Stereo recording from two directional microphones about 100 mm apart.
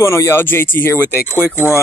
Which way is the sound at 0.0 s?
30° left (ahead or behind).